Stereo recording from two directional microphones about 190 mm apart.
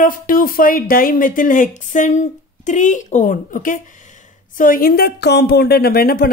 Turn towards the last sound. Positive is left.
turn(degrees=55)  # may be behind; listen again after turning